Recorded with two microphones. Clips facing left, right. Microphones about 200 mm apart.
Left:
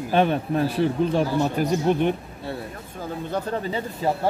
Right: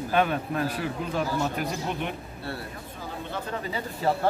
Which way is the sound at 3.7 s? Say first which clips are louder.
Left 2 dB; 15° left (ahead or behind).